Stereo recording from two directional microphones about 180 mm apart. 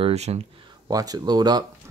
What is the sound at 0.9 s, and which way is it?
Speech, 20° right (ahead or behind).